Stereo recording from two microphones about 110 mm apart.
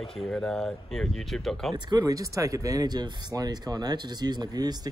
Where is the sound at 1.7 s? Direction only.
35° right (ahead or behind).